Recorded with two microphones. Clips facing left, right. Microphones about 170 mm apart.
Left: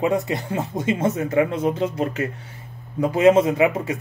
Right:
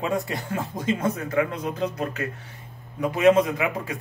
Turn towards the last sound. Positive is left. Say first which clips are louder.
# left 7 dB
turn(degrees=25)  # may be behind; listen again after turning